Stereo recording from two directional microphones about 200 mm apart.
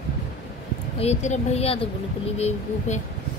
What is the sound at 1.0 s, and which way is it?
Speech, 35° left (ahead or behind).